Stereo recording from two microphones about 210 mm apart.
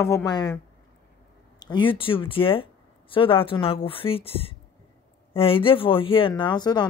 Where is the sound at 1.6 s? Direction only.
20° left (ahead or behind).